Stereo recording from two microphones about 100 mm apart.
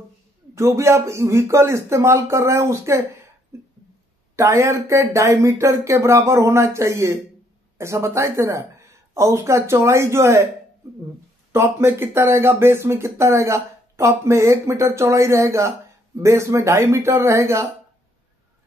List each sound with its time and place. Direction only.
0.6 s speech: 30° right (ahead or behind)
3.5 s a sound: 25° right (ahead or behind)
4.4 s a woman's voice: 25° right (ahead or behind)
11.5 s speech: 25° right (ahead or behind)